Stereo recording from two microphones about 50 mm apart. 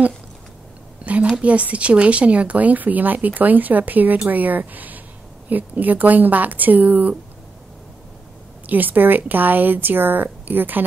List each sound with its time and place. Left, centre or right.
1.2 s speech: right
8.6 s speech: right